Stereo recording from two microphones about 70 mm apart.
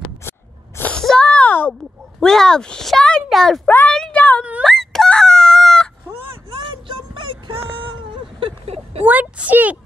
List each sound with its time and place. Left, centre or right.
0.2 s a sound: left
0.9 s a sound: centre
2.1 s a child's voice: centre
4.1 s speech: left
4.6 s chicken: centre
9.0 s a woman's voice: right